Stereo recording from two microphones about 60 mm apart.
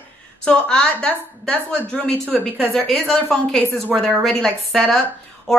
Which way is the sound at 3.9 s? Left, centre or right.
Centre.